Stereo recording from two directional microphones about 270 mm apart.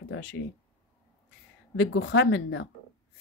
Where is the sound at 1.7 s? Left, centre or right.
Left.